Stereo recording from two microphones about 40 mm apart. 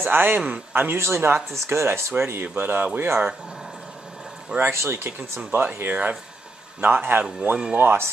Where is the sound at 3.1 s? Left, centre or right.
Centre.